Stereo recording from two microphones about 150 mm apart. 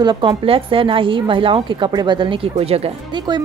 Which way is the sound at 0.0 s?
30° right (ahead or behind).